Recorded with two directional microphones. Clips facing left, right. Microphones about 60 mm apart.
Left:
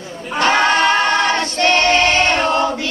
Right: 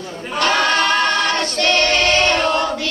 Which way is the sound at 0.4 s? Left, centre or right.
Left.